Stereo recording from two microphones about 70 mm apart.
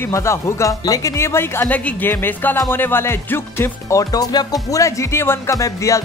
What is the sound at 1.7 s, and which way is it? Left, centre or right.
Speech, left.